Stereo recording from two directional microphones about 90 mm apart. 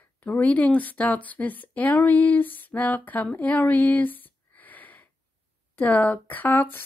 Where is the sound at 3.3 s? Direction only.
20° left (ahead or behind).